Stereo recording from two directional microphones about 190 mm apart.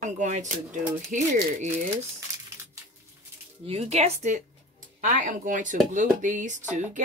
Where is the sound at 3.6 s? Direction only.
35° right (ahead or behind).